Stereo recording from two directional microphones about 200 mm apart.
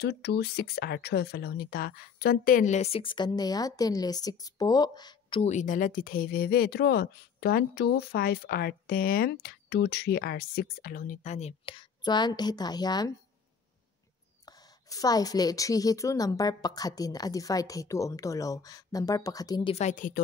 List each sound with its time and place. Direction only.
0.0 s speech: 55° left (ahead or behind); by 5.4 s 20° left (ahead or behind)
5.4 s speech: 35° left (ahead or behind); by 13.1 s 20° left (ahead or behind)
14.4 s a woman's voice: 20° left (ahead or behind)
19.7 s speech: 35° left (ahead or behind)